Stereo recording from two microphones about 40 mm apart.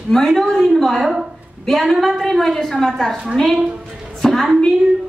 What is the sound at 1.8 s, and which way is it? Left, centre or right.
A woman's voice, centre.